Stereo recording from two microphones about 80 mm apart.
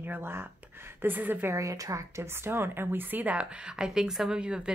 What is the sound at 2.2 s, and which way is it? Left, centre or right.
A woman's voice, right.